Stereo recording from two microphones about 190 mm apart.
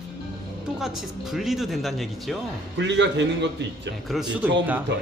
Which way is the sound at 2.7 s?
70° right (ahead or behind).